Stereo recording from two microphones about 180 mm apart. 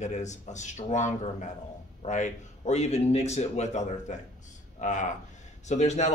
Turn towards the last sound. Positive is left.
turn(degrees=40)  # may be behind; listen again after turning